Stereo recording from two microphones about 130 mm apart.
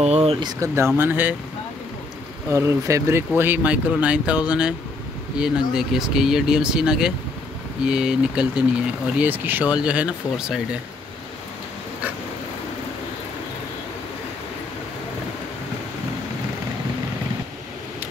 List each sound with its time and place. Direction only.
0.0 s speech: 55° right (ahead or behind)
0.4 s speech: 30° right (ahead or behind)
0.9 s speech: 15° right (ahead or behind)
2.5 s speech: 20° right (ahead or behind)